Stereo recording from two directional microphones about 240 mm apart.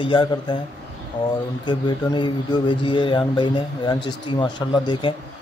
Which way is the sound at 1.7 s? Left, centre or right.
Centre.